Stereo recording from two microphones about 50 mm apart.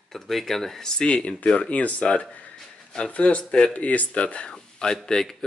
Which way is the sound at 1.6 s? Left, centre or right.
Left.